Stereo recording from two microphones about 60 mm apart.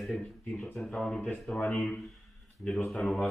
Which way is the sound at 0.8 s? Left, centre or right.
Centre.